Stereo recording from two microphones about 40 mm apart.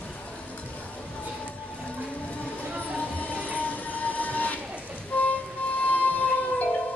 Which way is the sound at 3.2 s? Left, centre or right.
Left.